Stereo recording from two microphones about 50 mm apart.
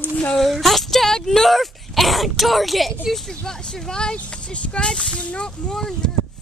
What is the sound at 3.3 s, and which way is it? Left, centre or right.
Speech, centre.